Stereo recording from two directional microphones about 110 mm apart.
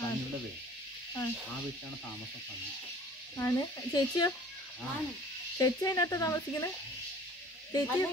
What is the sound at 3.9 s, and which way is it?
Speech, 40° left (ahead or behind).